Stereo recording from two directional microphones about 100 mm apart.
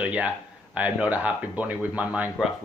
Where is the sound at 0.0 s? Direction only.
15° right (ahead or behind).